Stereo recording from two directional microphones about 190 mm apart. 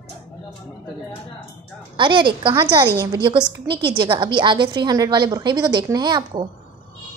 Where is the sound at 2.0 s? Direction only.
25° right (ahead or behind).